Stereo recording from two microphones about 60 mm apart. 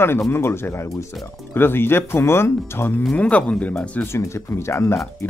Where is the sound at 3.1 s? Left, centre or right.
Left.